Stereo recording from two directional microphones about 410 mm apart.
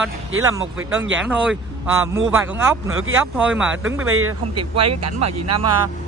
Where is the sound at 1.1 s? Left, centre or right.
Centre.